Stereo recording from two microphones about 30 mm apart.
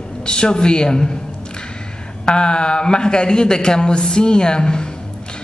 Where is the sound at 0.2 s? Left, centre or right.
Left.